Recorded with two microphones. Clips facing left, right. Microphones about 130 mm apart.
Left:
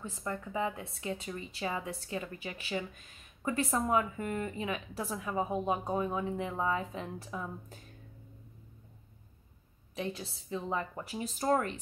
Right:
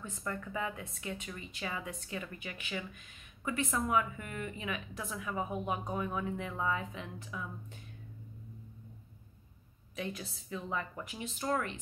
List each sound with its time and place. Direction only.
0.0 s speech: 25° left (ahead or behind)
9.9 s speech: 30° left (ahead or behind)